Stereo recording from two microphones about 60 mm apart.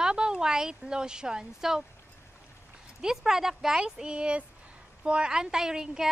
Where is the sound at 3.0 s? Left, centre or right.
Centre.